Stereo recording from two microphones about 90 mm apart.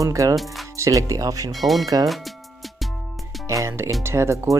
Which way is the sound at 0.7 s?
35° right (ahead or behind).